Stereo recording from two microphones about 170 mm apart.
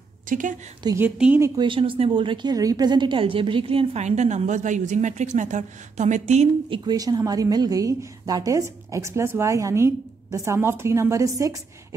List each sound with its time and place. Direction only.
0.3 s a woman's voice: 50° right (ahead or behind)
0.8 s a woman's voice: 15° right (ahead or behind)
1.4 s a woman's voice: 30° right (ahead or behind)
6.8 s a woman's voice: 25° right (ahead or behind)